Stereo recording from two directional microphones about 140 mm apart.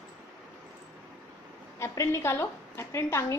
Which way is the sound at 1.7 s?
20° left (ahead or behind).